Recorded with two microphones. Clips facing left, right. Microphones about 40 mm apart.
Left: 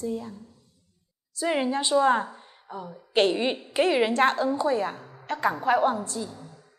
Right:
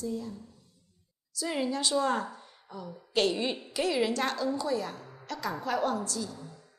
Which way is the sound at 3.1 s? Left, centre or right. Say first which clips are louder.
Left 5 dB; left.